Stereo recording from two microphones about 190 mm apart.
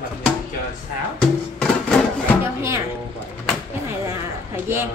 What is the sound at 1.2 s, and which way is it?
Music, 5° left (ahead or behind).